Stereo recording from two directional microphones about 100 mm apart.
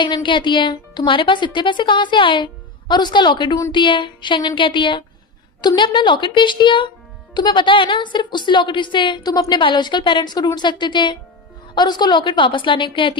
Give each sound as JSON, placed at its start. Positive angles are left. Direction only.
{"t": 0.0, "sound": "a woman's voice", "side_deg": 50}